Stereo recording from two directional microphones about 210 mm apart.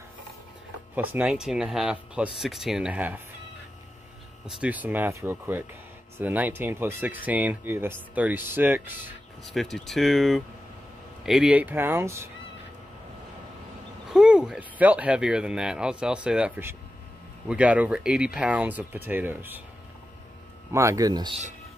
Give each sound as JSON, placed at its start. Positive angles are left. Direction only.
{"t": 0.9, "sound": "speech", "side_deg": -5}
{"t": 4.5, "sound": "speech", "side_deg": -5}
{"t": 9.5, "sound": "speech", "side_deg": 0}
{"t": 14.1, "sound": "speech", "side_deg": -5}
{"t": 20.7, "sound": "speech", "side_deg": -15}